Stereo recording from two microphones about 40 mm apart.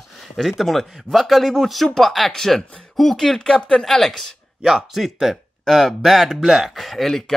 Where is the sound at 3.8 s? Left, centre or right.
Centre.